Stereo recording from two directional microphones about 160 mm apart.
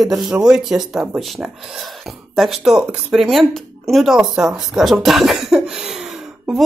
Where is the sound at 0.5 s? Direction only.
5° right (ahead or behind).